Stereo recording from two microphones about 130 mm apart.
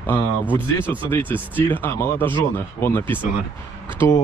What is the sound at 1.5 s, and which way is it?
Speech, 15° left (ahead or behind).